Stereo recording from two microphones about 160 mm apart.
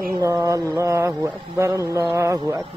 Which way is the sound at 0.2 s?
20° right (ahead or behind).